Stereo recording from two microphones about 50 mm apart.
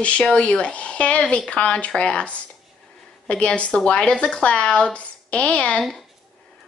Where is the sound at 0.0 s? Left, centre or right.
Left.